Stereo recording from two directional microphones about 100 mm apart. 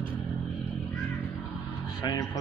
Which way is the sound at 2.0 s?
40° left (ahead or behind).